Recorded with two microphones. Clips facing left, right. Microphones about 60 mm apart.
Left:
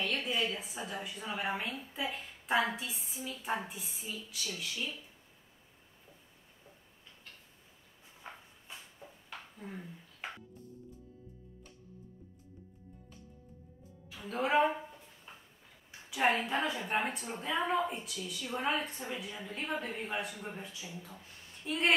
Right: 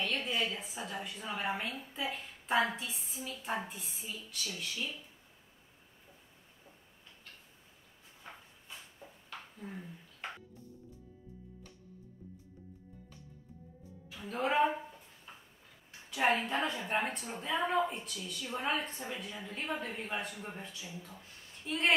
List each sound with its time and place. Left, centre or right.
0.0 s a woman's voice: centre
8.2 s a sound: centre
14.2 s a woman's voice: centre
16.3 s a woman's voice: centre